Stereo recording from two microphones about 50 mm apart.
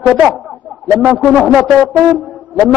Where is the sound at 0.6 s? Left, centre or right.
Right.